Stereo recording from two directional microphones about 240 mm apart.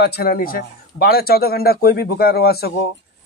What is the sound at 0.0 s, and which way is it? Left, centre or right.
Speech, left.